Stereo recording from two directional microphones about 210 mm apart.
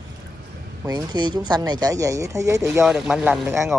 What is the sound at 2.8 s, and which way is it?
Speech, centre (ahead or behind).